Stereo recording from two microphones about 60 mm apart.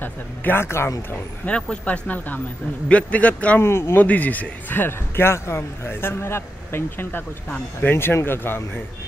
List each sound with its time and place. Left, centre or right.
0.0 s a man's voice: left
1.4 s speech: left
3.6 s speech: left
4.0 s a man's voice: left
7.4 s speech: left
7.9 s a man's voice: left